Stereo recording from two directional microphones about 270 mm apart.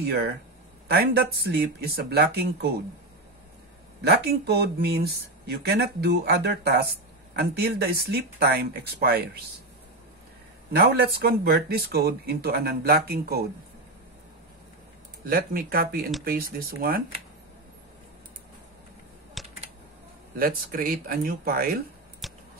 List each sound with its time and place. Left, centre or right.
0.0 s speech: right
4.0 s speech: right
10.7 s speech: right
15.2 s speech: right
19.4 s typing: centre
20.3 s speech: right
22.2 s a sound: centre